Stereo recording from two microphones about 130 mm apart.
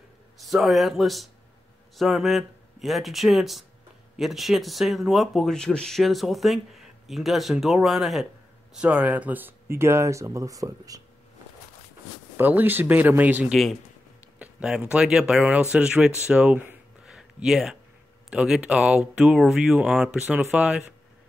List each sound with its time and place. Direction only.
0.4 s speech: centre (ahead or behind); by 11.0 s 25° right (ahead or behind)
12.4 s speech: 15° right (ahead or behind)
17.0 s a sound: 5° right (ahead or behind)
18.3 s speech: 5° right (ahead or behind)